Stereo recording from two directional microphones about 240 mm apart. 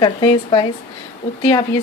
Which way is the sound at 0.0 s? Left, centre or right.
Centre.